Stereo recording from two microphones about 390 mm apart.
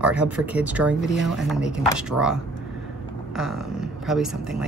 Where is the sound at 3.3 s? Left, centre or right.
Centre.